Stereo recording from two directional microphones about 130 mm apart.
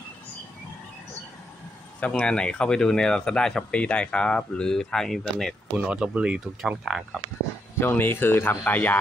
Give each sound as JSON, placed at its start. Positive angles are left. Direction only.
{"t": 2.0, "sound": "speech", "side_deg": 10}
{"t": 5.8, "sound": "speech", "side_deg": -10}
{"t": 7.8, "sound": "speech", "side_deg": 15}